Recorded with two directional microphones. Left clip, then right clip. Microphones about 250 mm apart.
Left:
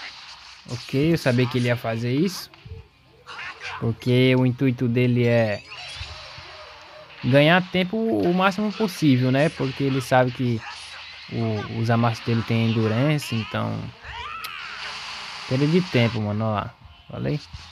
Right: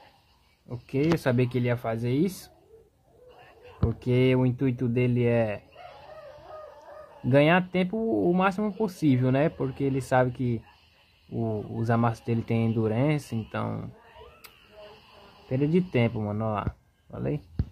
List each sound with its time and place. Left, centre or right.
0.7 s speech: centre
3.3 s cat: left
4.0 s speech: centre
7.2 s speech: centre
14.5 s a sound: left
15.5 s speech: centre